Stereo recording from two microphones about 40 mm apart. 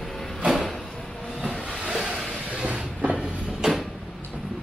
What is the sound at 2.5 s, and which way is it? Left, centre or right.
Vehicle, right.